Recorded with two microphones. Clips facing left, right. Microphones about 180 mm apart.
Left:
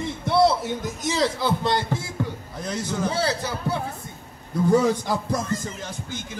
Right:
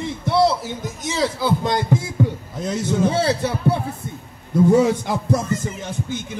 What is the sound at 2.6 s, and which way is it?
A man's voice, 25° right (ahead or behind).